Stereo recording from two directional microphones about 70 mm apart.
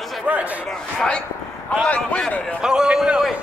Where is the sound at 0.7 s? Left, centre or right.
Centre.